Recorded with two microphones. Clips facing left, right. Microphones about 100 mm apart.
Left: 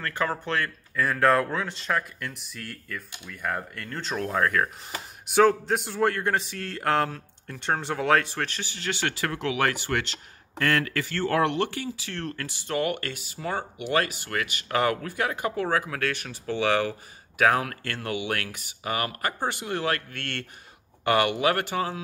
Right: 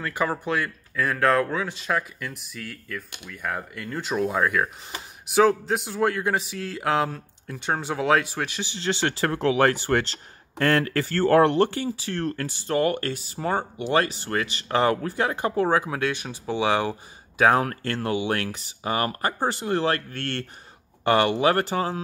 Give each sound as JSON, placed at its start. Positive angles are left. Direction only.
{"t": 0.0, "sound": "speech", "side_deg": -10}
{"t": 17.4, "sound": "speech", "side_deg": -30}